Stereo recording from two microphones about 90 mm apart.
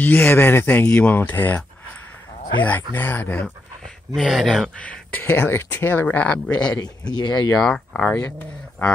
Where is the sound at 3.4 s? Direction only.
5° left (ahead or behind).